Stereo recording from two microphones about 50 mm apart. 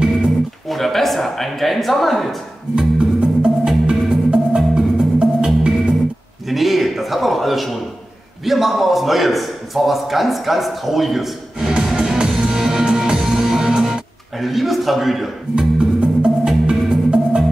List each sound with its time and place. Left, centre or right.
0.7 s speech: centre
3.0 s music: centre
6.5 s a sound: centre
8.5 s a man's voice: centre
11.6 s music: centre
14.4 s a man's voice: centre
15.5 s music: centre